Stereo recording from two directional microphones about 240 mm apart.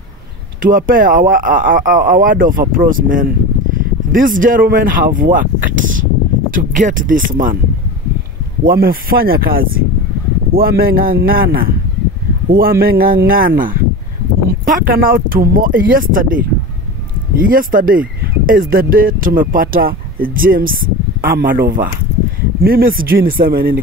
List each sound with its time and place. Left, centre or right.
0.6 s speech: right
8.6 s speech: right
17.4 s speech: right